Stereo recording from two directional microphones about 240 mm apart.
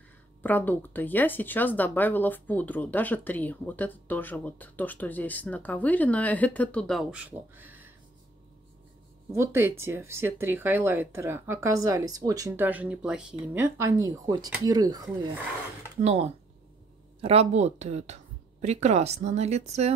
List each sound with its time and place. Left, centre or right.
0.4 s speech: centre
9.3 s speech: centre; by 19.9 s right